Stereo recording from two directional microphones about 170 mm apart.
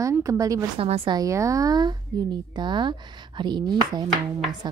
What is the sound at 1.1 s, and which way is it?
Speech, 20° right (ahead or behind).